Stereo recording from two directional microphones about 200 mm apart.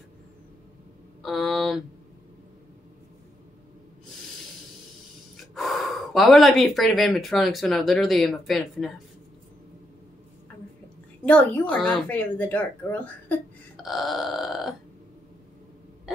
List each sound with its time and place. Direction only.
1.2 s speech: centre (ahead or behind)
5.5 s speech: centre (ahead or behind)
11.2 s a child's voice: 5° left (ahead or behind)